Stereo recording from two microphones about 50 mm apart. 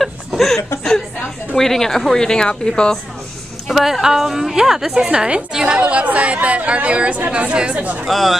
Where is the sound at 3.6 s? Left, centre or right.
Centre.